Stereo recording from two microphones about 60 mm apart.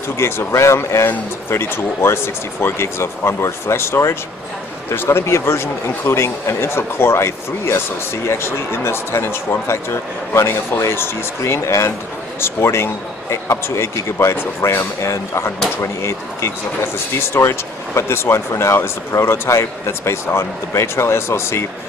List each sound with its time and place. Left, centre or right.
0.2 s speech: left